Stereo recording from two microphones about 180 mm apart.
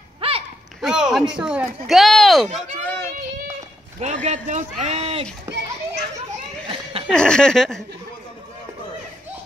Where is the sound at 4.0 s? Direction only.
40° right (ahead or behind).